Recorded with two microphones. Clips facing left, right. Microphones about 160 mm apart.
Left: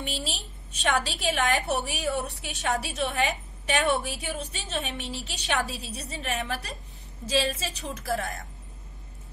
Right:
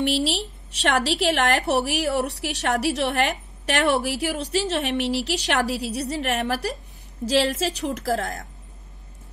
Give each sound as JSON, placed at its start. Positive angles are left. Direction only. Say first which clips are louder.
{"t": 0.0, "sound": "a woman's voice", "louder": "right 11 dB", "side_deg": -80}